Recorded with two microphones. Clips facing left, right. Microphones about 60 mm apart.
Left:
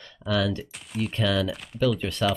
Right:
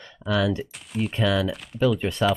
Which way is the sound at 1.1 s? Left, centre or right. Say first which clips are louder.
Right 2 dB; centre.